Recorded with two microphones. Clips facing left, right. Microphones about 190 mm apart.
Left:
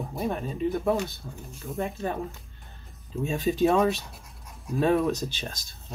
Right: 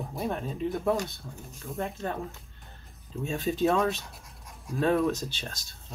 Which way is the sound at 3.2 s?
15° left (ahead or behind).